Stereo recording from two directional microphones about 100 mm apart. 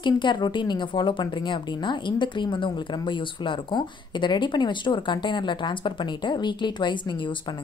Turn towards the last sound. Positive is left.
turn(degrees=50)  # may be behind; listen again after turning